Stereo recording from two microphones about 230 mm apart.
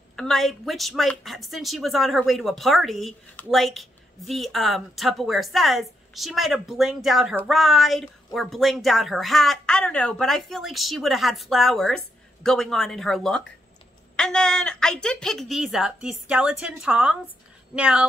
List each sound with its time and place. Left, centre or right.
0.1 s a woman's voice: centre